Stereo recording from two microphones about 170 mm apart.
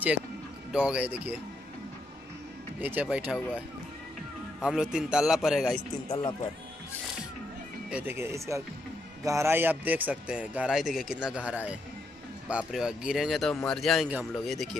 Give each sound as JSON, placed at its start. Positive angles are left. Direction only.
{"t": 0.7, "sound": "speech", "side_deg": -5}
{"t": 2.8, "sound": "speech", "side_deg": -10}
{"t": 4.6, "sound": "speech", "side_deg": -5}
{"t": 6.0, "sound": "speech", "side_deg": 25}
{"t": 7.9, "sound": "speech", "side_deg": -10}